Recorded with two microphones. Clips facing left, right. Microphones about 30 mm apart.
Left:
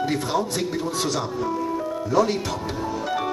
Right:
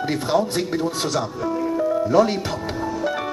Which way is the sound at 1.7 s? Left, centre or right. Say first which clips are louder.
Right 5 dB; centre.